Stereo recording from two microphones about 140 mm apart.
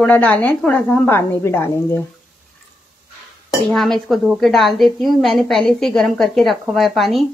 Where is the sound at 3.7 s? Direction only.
Centre (ahead or behind).